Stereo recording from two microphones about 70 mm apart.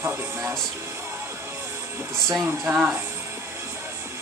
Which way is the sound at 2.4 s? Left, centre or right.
Right.